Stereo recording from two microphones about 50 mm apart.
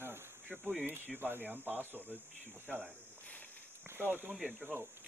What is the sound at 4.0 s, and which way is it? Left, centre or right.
Speech, right.